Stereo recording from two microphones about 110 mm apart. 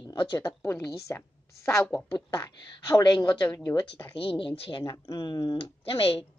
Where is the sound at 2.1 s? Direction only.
35° left (ahead or behind).